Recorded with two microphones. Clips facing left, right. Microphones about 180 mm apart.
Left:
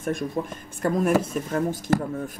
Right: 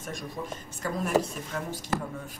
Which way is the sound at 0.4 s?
60° left (ahead or behind).